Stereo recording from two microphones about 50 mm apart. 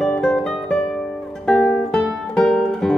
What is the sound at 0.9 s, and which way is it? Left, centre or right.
Music, centre.